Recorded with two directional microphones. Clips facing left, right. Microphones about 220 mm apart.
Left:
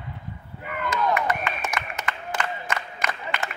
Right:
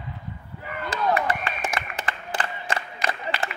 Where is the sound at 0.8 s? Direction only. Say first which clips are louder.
Even; 30° right (ahead or behind).